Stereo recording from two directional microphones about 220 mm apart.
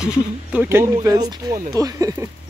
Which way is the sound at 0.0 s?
5° right (ahead or behind).